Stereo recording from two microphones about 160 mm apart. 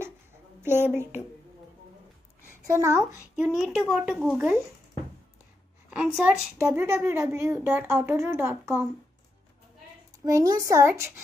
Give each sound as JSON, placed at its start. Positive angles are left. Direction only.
{"t": 0.6, "sound": "speech", "side_deg": -15}
{"t": 2.6, "sound": "a woman's voice", "side_deg": -15}
{"t": 3.4, "sound": "speech", "side_deg": -5}
{"t": 5.9, "sound": "a woman's voice", "side_deg": -10}
{"t": 10.2, "sound": "speech", "side_deg": -20}